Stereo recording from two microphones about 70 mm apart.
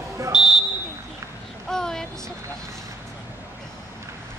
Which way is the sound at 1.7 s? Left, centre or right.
Centre.